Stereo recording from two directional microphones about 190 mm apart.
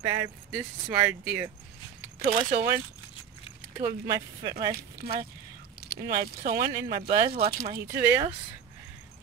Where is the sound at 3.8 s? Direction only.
20° right (ahead or behind).